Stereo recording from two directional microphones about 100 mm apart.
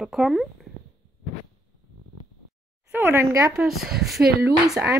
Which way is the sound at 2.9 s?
25° right (ahead or behind).